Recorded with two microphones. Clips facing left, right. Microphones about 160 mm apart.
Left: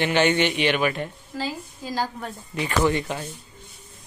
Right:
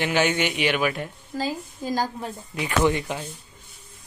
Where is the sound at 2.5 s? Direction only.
10° right (ahead or behind).